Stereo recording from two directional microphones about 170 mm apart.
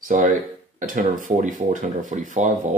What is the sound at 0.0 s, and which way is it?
Speech, 50° right (ahead or behind).